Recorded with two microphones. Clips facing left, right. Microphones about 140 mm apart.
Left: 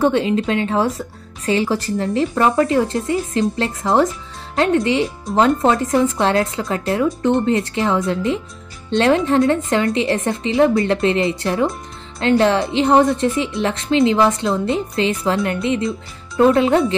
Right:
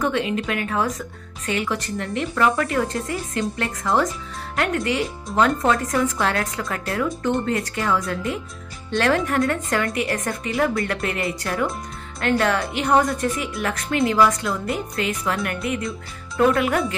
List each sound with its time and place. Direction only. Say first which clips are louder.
0.0 s speech: left 6 dB; 30° left (ahead or behind)